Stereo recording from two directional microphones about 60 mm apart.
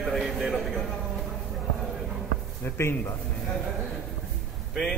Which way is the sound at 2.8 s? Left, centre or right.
Left.